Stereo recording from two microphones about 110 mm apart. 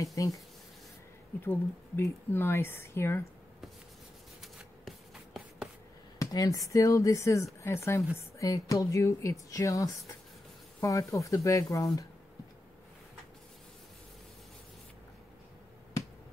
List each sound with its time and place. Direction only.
0.0 s speech: 30° left (ahead or behind)
1.4 s speech: 20° left (ahead or behind)
4.4 s writing: centre (ahead or behind)
6.1 s speech: 35° left (ahead or behind)